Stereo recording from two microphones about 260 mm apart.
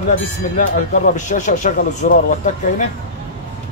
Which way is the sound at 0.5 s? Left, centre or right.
Left.